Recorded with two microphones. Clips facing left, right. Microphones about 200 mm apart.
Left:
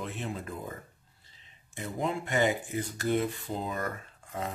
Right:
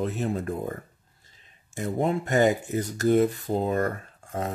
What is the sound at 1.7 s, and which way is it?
Speech, 45° right (ahead or behind).